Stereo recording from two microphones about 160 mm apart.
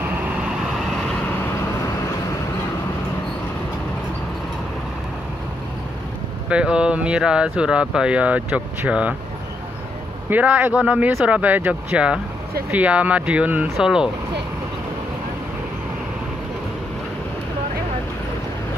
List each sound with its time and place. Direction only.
0.0 s vehicle: 5° right (ahead or behind)
6.5 s speech: 5° right (ahead or behind)
10.3 s speech: 10° right (ahead or behind)